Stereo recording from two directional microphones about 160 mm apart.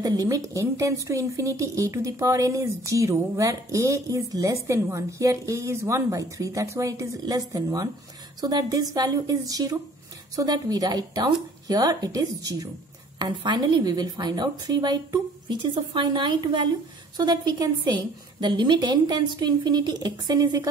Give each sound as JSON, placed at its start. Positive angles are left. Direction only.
{"t": 0.0, "sound": "a woman's voice", "side_deg": -20}